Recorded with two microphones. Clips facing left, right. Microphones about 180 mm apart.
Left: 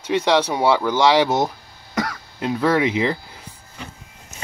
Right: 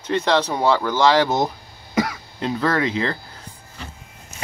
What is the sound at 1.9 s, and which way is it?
Throat clearing, 5° right (ahead or behind).